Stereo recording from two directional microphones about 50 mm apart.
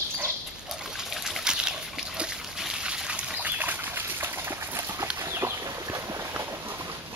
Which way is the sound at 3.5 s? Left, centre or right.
Right.